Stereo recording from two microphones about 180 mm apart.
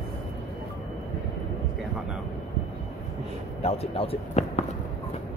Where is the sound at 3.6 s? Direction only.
35° left (ahead or behind).